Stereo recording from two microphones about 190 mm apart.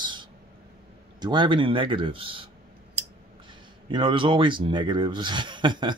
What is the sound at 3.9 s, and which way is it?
Speech, 25° right (ahead or behind).